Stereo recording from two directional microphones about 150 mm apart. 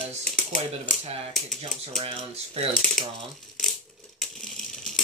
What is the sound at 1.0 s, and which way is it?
Speech, 40° right (ahead or behind).